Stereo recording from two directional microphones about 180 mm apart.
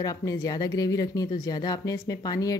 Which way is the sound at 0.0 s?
20° left (ahead or behind).